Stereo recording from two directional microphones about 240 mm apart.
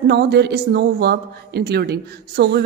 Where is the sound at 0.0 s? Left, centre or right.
Right.